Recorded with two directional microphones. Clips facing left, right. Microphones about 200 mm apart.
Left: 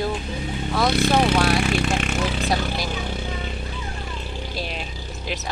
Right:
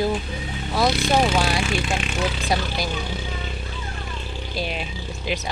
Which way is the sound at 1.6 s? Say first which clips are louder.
Left 3 dB; 55° left (ahead or behind).